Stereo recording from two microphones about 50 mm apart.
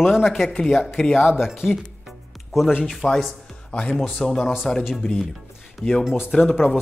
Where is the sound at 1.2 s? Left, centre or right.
Centre.